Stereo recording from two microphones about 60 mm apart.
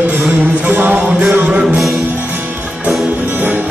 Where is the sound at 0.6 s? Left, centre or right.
Right.